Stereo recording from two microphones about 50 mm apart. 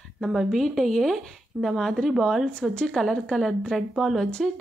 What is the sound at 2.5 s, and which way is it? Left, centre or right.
Speech, centre.